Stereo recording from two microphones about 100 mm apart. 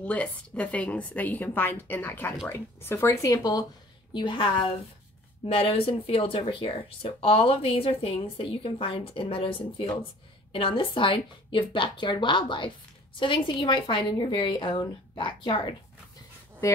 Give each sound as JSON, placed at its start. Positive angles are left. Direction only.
{"t": 0.0, "sound": "a woman's voice", "side_deg": 15}
{"t": 4.1, "sound": "a woman's voice", "side_deg": 50}